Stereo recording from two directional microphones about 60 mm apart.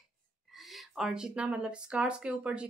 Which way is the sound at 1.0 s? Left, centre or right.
Centre.